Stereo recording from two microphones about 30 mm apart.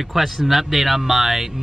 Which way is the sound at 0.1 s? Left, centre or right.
Centre.